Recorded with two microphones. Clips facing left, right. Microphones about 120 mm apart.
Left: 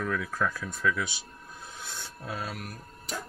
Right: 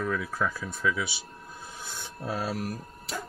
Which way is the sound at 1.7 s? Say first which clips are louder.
Even; 10° right (ahead or behind).